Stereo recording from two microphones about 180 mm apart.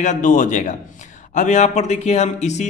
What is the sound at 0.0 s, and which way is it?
Speech, 45° left (ahead or behind).